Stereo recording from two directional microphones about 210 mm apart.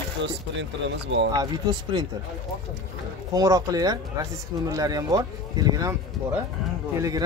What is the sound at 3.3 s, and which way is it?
Speech, 15° right (ahead or behind).